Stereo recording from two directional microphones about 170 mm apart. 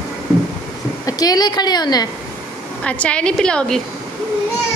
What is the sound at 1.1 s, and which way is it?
A woman's voice, 20° left (ahead or behind).